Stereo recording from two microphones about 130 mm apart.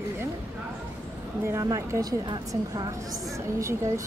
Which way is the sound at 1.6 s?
25° right (ahead or behind).